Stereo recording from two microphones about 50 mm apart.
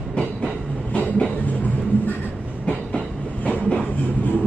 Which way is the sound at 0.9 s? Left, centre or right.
Left.